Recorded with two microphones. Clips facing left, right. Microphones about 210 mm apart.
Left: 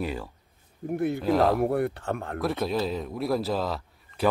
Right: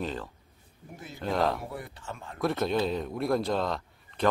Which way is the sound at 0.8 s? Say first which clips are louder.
Left 18 dB; 60° left (ahead or behind).